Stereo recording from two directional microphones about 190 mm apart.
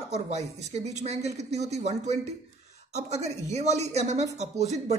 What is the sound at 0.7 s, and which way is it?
A woman's voice, 35° right (ahead or behind).